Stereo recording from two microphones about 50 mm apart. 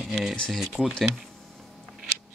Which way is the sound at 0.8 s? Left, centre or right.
Right.